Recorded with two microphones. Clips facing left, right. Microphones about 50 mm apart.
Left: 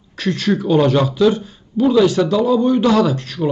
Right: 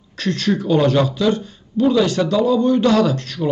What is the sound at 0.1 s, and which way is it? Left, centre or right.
Speech, centre.